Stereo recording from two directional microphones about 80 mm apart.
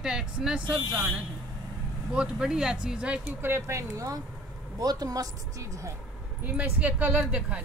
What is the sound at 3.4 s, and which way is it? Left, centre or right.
Speech, right.